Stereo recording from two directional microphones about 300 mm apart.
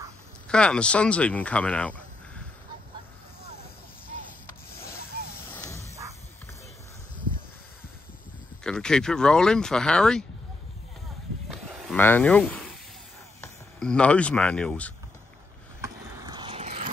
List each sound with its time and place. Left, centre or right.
0.5 s speech: centre
5.5 s music: centre
8.6 s speech: centre
11.4 s a sound: centre
13.4 s speech: centre
15.8 s a sound: centre